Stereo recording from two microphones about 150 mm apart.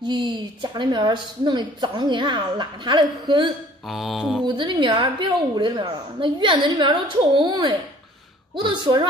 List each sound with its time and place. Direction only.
0.0 s a woman's voice: 30° right (ahead or behind)
3.8 s mantra: centre (ahead or behind)
4.5 s a woman's voice: 30° right (ahead or behind)